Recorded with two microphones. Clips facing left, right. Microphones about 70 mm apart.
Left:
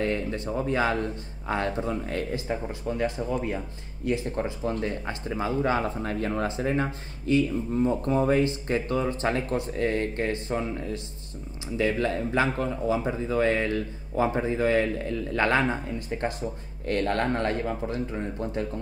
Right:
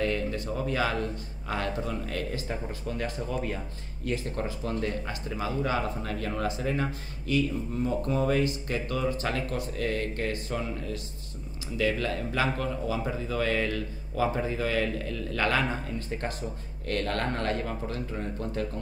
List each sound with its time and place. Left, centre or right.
0.0 s speech: left